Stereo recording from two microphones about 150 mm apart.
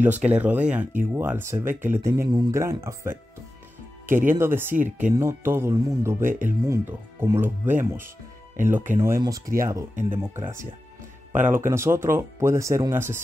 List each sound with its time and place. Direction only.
0.0 s speech: 10° right (ahead or behind)